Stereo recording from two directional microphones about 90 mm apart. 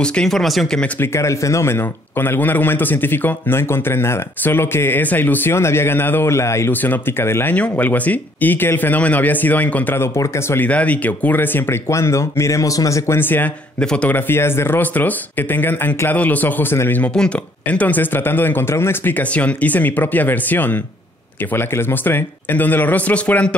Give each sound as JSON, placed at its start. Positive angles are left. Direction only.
{"t": 0.0, "sound": "speech", "side_deg": 10}
{"t": 0.9, "sound": "speech", "side_deg": 30}
{"t": 6.7, "sound": "speech", "side_deg": 20}
{"t": 10.1, "sound": "speech", "side_deg": 35}
{"t": 10.6, "sound": "speech", "side_deg": 15}
{"t": 13.7, "sound": "speech", "side_deg": 10}
{"t": 14.1, "sound": "speech", "side_deg": 25}
{"t": 17.1, "sound": "speech", "side_deg": 10}